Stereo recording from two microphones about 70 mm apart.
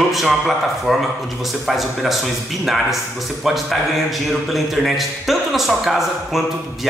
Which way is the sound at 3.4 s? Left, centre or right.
Centre.